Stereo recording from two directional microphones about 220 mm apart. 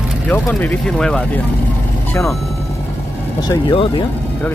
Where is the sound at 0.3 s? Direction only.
5° left (ahead or behind).